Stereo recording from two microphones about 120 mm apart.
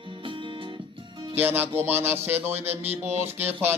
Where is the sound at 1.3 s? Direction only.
15° right (ahead or behind).